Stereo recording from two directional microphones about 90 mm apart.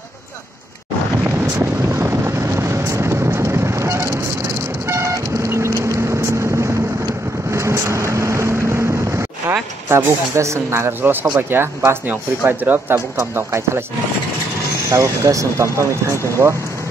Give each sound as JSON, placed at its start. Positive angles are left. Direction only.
{"t": 1.2, "sound": "boat", "side_deg": -30}
{"t": 4.8, "sound": "vehicle", "side_deg": -30}
{"t": 9.5, "sound": "speech", "side_deg": -25}
{"t": 14.9, "sound": "speech", "side_deg": -35}